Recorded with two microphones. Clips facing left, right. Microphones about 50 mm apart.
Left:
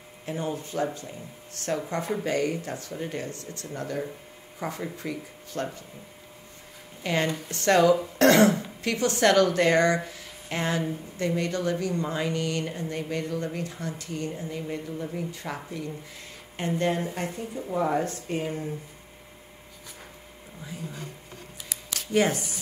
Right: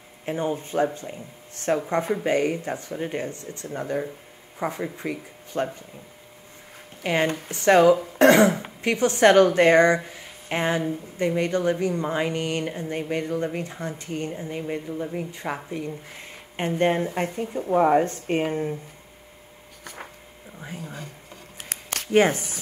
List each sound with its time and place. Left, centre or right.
0.2 s a woman's voice: right
7.0 s a woman's voice: right
8.2 s cough: centre
8.8 s a woman's voice: right
18.5 s speech: right
20.6 s a sound: right